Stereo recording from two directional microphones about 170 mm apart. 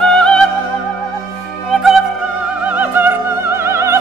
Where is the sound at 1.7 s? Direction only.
Centre (ahead or behind).